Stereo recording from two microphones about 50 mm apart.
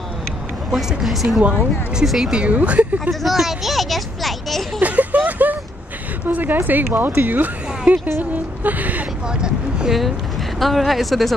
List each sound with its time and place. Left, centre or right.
0.7 s speech: centre
2.3 s speech: right
3.1 s speech: centre
4.7 s a sound: right
6.2 s a woman's voice: right
7.8 s a woman's voice: right
9.3 s speech: centre
10.6 s speech: centre